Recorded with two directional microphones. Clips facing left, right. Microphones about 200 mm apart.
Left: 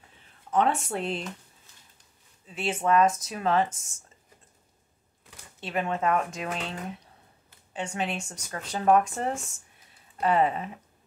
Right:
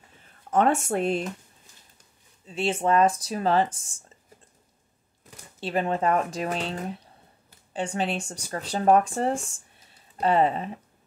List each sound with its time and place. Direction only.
0.5 s speech: 45° right (ahead or behind)
2.4 s speech: 30° right (ahead or behind)
5.6 s speech: 35° right (ahead or behind)